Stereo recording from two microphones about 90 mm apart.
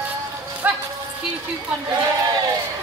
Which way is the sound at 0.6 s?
20° right (ahead or behind).